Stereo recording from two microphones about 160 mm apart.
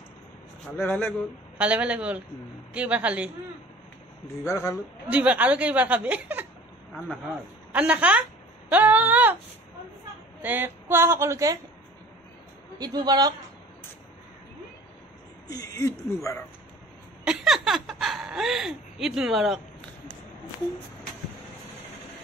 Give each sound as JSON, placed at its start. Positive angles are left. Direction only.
{"t": 0.7, "sound": "a man's voice", "side_deg": 10}
{"t": 1.6, "sound": "a woman's voice", "side_deg": -5}
{"t": 4.5, "sound": "speech", "side_deg": 20}
{"t": 5.1, "sound": "a woman's voice", "side_deg": -10}
{"t": 7.7, "sound": "a woman's voice", "side_deg": -10}
{"t": 10.4, "sound": "a woman's voice", "side_deg": -10}
{"t": 12.7, "sound": "a man's voice", "side_deg": -25}
{"t": 15.5, "sound": "speech", "side_deg": 20}
{"t": 17.2, "sound": "speech", "side_deg": -5}